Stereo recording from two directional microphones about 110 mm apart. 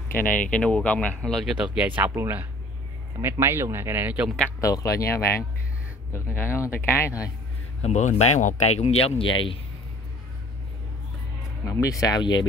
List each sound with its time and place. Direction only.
0.1 s speech: 15° left (ahead or behind); by 1.7 s centre (ahead or behind)
1.7 s speech: 15° right (ahead or behind)
4.6 s a man's voice: 30° left (ahead or behind)
7.8 s speech: 90° left; by 9.6 s 55° left (ahead or behind)
11.6 s speech: 30° left (ahead or behind)